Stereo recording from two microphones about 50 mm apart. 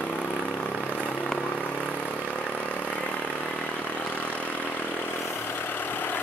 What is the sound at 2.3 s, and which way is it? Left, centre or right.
Vehicle, left.